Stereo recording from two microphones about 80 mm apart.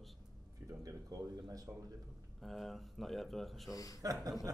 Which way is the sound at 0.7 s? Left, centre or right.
Right.